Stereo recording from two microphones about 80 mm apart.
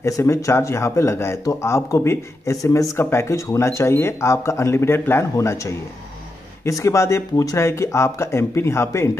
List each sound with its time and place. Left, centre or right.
0.0 s speech: left